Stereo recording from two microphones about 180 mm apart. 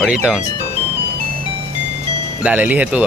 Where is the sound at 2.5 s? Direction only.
10° right (ahead or behind).